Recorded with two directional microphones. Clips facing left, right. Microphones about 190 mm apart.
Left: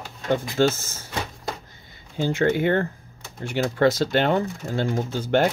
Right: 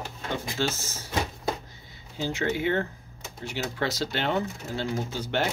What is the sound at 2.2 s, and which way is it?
Speech, 55° left (ahead or behind).